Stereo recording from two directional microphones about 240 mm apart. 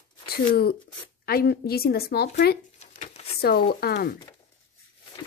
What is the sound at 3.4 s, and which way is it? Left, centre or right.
Speech, left.